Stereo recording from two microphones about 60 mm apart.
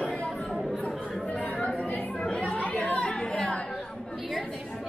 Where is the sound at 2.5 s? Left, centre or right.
Centre.